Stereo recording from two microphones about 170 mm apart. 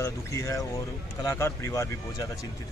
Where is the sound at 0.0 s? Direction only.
15° left (ahead or behind).